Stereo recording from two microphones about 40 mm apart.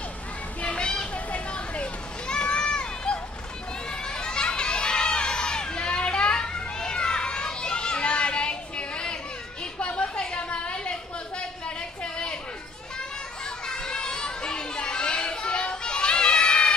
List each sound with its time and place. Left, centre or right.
0.6 s children playing: left
3.9 s crowd: left
9.9 s a sound: left
13.7 s children playing: centre